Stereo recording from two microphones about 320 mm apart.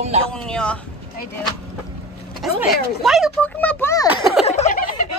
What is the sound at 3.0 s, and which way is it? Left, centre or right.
Speech, centre.